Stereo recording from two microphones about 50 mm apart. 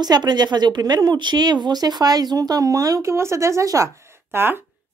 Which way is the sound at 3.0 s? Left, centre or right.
Right.